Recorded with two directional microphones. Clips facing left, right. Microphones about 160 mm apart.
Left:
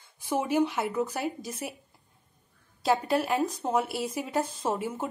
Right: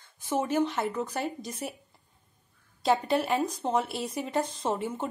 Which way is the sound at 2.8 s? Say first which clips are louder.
Even; 5° left (ahead or behind).